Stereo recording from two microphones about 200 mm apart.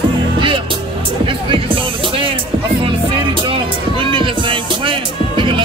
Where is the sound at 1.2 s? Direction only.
25° right (ahead or behind).